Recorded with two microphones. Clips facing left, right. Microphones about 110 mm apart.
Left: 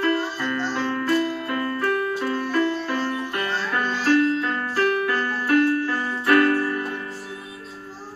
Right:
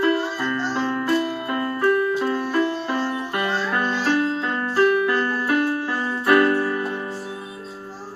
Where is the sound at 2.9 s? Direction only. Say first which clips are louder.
Right 1 dB; 25° right (ahead or behind).